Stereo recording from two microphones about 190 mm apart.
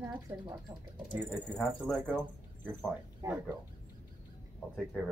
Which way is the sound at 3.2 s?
20° right (ahead or behind).